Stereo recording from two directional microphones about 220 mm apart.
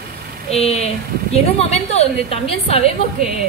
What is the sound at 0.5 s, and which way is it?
A woman's voice, 30° left (ahead or behind).